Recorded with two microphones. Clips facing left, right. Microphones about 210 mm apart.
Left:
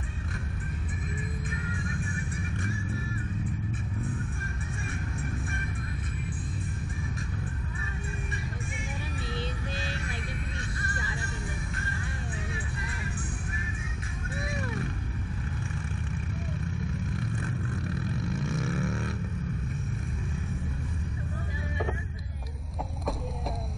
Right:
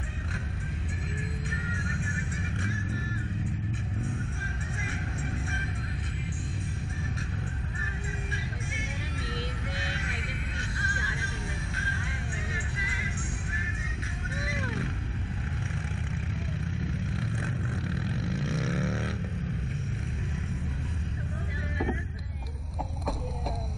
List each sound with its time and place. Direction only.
17.2 s vehicle: 25° right (ahead or behind)